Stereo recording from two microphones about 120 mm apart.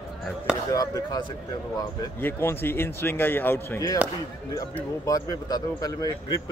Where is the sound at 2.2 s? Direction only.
20° left (ahead or behind).